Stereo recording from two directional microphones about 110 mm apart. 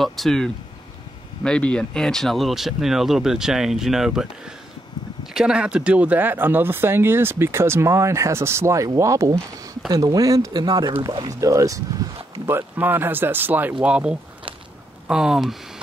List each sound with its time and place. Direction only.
0.0 s speech: centre (ahead or behind)
5.3 s speech: 5° right (ahead or behind); by 11.8 s 30° right (ahead or behind)
12.4 s speech: 20° right (ahead or behind); by 15.5 s 5° right (ahead or behind)